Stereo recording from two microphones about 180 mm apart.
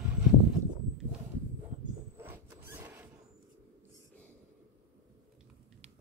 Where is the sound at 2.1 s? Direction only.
10° right (ahead or behind).